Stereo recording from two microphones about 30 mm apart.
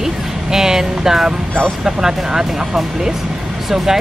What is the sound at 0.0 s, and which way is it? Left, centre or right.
Music, centre.